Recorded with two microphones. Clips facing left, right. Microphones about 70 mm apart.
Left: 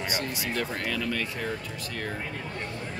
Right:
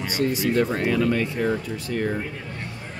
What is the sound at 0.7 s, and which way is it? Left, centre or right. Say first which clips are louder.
Speech: right 9 dB; centre.